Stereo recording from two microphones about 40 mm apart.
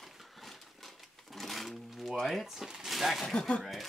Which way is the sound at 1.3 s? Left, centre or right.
Centre.